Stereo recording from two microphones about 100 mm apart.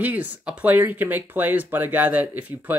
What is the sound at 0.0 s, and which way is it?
Speech, 15° right (ahead or behind).